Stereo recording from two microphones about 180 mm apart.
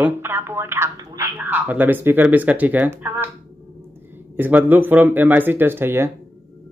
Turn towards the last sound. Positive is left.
turn(degrees=-15)  # may be behind; listen again after turning